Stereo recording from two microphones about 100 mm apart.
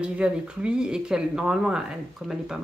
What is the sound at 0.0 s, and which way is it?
Speech, 10° right (ahead or behind).